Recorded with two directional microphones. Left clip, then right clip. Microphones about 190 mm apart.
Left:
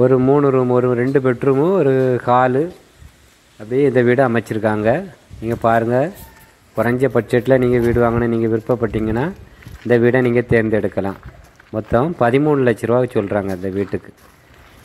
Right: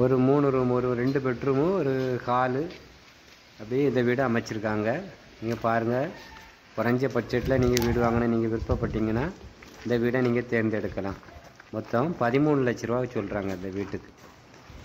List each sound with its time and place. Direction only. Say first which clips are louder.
0.2 s a man's voice: left 9 dB; 15° left (ahead or behind)